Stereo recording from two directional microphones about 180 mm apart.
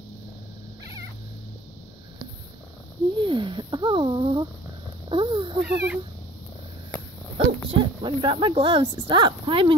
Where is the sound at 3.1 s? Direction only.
25° right (ahead or behind).